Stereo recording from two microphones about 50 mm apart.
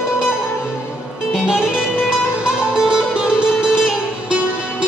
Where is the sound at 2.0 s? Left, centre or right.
Centre.